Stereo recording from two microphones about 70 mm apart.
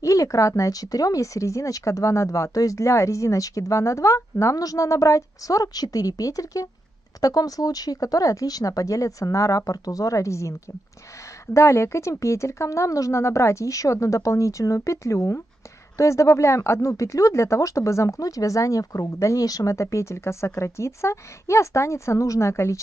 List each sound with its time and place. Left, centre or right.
0.0 s speech: left
11.5 s speech: left